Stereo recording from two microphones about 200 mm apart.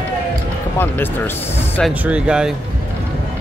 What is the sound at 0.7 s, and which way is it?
Speech, 10° left (ahead or behind).